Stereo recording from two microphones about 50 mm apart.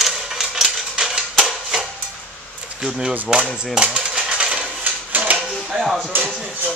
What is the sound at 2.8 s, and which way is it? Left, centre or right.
Speech, centre.